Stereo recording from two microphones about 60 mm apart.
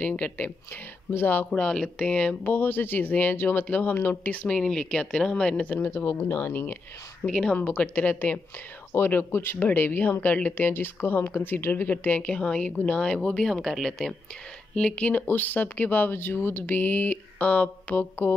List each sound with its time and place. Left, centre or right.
0.0 s speech: left
1.5 s speech: centre
2.4 s speech: left
4.6 s speech: centre
5.8 s speech: left
7.2 s speech: centre
7.5 s speech: left
8.9 s speech: left
10.7 s speech: left; by 13.5 s centre
13.5 s speech: centre
14.8 s speech: centre
15.2 s speech: left